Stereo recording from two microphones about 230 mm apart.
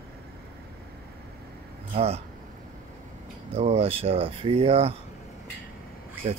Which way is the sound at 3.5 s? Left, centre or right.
Right.